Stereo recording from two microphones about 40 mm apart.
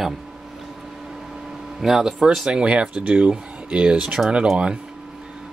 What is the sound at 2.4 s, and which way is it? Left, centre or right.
Speech, right.